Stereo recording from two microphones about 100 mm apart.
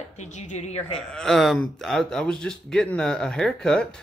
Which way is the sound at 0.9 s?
5° left (ahead or behind).